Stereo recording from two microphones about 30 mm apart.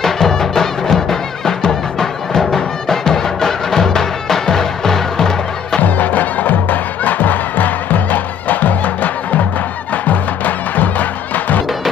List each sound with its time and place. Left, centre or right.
0.0 s music: centre
5.8 s music: left